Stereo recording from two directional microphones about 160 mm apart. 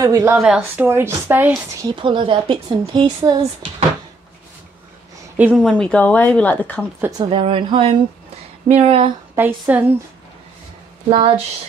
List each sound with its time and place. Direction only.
0.0 s speech: 20° right (ahead or behind)
0.4 s speech: 5° right (ahead or behind)
0.8 s speech: 15° right (ahead or behind)
5.6 s speech: 5° left (ahead or behind)
7.0 s speech: 25° right (ahead or behind)
7.2 s speech: 35° right (ahead or behind)
9.3 s a woman's voice: 10° right (ahead or behind)
11.1 s speech: 35° right (ahead or behind)